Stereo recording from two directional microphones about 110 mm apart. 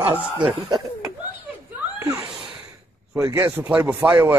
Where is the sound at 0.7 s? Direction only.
30° right (ahead or behind).